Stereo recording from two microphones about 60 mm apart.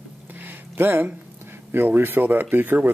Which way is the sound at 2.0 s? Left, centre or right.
Right.